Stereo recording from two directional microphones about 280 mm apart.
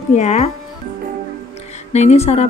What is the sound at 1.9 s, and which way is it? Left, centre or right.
Speech, left.